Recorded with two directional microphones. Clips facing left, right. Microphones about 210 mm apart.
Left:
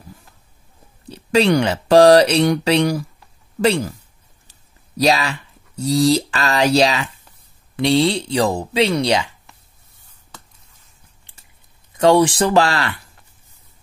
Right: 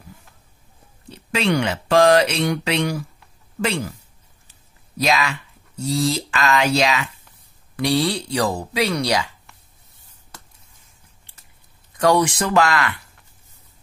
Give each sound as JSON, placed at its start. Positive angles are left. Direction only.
{"t": 1.1, "sound": "speech", "side_deg": 35}
{"t": 4.5, "sound": "a sound", "side_deg": 35}
{"t": 5.9, "sound": "speech", "side_deg": 35}
{"t": 12.0, "sound": "speech", "side_deg": 30}